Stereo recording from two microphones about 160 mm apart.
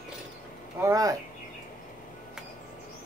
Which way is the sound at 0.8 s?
20° right (ahead or behind).